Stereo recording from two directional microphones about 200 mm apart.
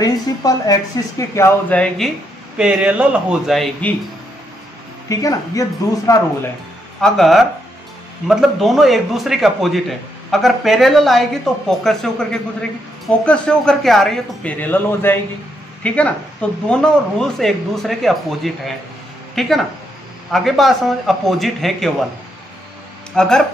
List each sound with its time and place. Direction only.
0.0 s speech: 20° left (ahead or behind); by 3.9 s centre (ahead or behind)
5.1 s speech: 15° left (ahead or behind)
7.0 s speech: centre (ahead or behind)
23.1 s speech: 5° left (ahead or behind)